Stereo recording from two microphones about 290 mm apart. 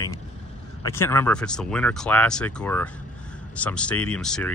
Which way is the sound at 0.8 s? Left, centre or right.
Centre.